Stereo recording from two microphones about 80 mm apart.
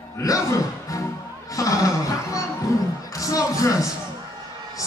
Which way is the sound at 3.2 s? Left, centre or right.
Left.